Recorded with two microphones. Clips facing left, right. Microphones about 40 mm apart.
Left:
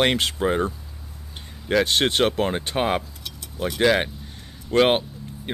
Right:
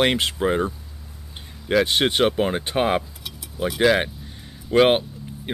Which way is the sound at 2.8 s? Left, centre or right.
Centre.